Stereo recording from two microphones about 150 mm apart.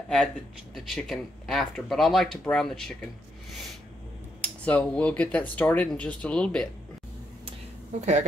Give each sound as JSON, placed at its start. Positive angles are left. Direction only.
{"t": 0.7, "sound": "speech", "side_deg": 0}
{"t": 4.4, "sound": "speech", "side_deg": 10}
{"t": 8.0, "sound": "speech", "side_deg": -50}